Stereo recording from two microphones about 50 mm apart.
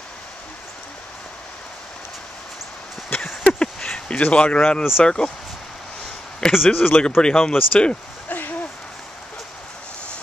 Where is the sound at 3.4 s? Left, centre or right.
Centre.